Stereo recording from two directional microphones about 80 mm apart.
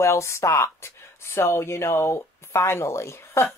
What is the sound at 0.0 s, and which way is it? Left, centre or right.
Speech, left.